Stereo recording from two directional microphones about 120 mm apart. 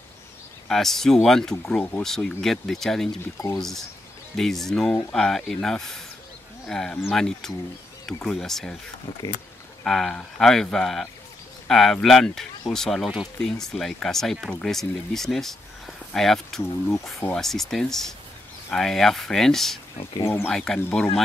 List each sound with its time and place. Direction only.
0.7 s speech: centre (ahead or behind)
2.0 s speech: 5° left (ahead or behind)
9.8 s speech: centre (ahead or behind)
20.2 s speech: 20° left (ahead or behind)
20.4 s speech: 5° left (ahead or behind)